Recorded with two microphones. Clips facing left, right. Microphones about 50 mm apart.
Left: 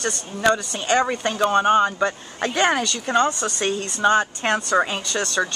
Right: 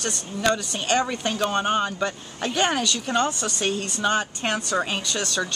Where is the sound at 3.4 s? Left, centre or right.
Left.